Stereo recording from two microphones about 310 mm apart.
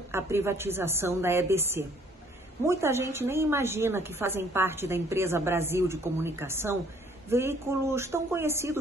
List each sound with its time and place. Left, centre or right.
0.1 s a woman's voice: centre